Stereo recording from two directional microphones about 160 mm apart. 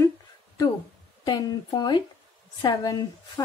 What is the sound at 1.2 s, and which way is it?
A woman's voice, 25° left (ahead or behind).